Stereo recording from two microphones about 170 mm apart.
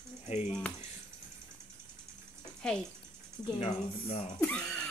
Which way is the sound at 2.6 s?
5° left (ahead or behind).